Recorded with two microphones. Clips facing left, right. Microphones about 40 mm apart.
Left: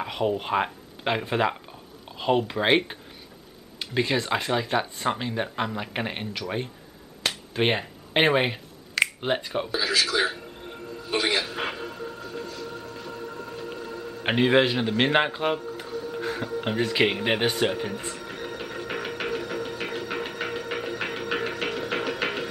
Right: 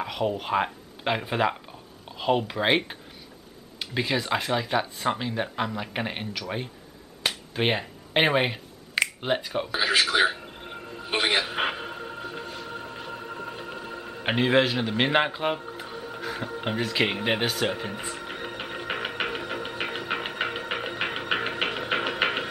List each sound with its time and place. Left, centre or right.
0.0 s speech: centre
7.2 s finger snapping: centre
9.2 s speech: centre
9.8 s music: right
14.2 s speech: centre
16.6 s speech: centre
18.2 s music: right